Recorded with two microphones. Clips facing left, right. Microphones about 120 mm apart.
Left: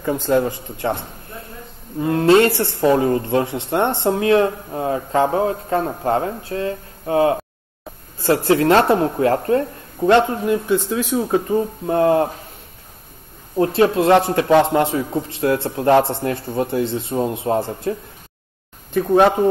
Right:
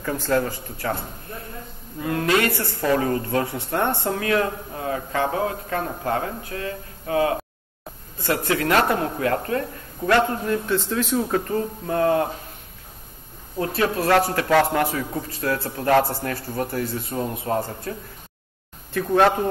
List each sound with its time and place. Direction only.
0.0 s speech: 20° left (ahead or behind)
11.9 s speech: 30° left (ahead or behind)
13.6 s speech: 30° left (ahead or behind)
18.9 s speech: 15° left (ahead or behind)